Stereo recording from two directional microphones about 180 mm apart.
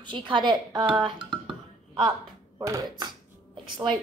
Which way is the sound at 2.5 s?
20° right (ahead or behind).